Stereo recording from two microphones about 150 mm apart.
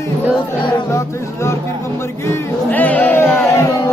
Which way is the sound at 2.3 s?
10° left (ahead or behind).